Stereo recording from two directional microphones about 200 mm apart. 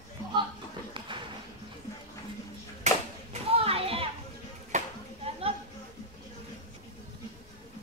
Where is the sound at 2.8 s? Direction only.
30° right (ahead or behind).